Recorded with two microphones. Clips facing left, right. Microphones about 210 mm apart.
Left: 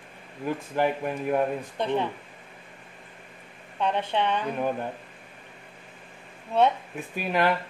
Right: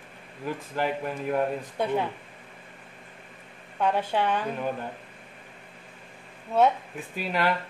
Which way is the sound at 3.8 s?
5° right (ahead or behind).